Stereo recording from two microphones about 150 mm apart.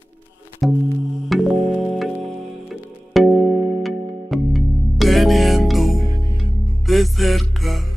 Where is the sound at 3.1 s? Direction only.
Centre (ahead or behind).